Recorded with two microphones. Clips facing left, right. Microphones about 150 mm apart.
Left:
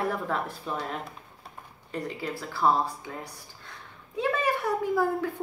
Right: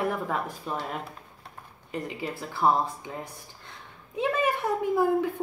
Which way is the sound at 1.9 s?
15° right (ahead or behind).